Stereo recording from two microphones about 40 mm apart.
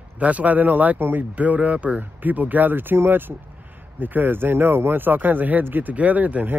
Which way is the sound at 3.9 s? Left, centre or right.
Right.